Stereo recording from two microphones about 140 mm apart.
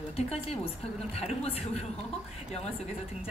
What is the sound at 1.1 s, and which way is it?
Speech, 45° left (ahead or behind).